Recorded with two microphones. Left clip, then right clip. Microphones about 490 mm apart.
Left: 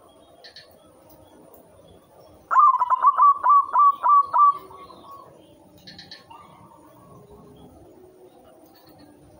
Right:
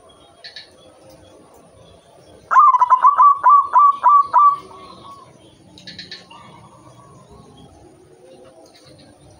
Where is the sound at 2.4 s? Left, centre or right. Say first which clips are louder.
Right 5 dB; left.